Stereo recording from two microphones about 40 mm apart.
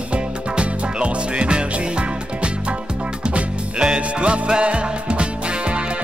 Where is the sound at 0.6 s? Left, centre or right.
Right.